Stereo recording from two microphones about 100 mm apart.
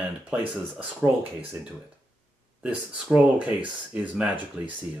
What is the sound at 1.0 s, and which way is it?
Speech, 15° right (ahead or behind).